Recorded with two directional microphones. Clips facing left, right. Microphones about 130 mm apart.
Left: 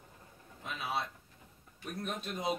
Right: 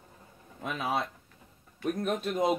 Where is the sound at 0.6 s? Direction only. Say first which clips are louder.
Right 6 dB; 55° right (ahead or behind).